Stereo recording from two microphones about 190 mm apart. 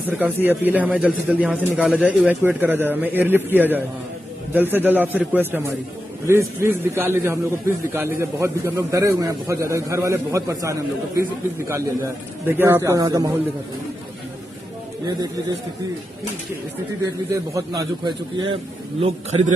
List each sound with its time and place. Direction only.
0.1 s a man's voice: 10° right (ahead or behind)
17.6 s a man's voice: 25° right (ahead or behind)